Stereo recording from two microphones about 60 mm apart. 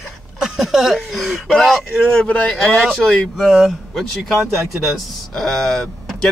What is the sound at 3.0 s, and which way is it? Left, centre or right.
Speech, centre.